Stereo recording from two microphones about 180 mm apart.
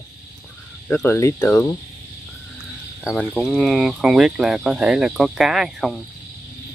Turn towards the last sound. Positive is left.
turn(degrees=0)  # may be behind; listen again after turning